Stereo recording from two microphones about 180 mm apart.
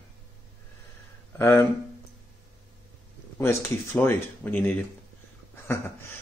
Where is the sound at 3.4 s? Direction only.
15° left (ahead or behind).